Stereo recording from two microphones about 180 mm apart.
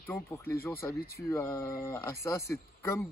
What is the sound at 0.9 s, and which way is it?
Speech, 60° left (ahead or behind).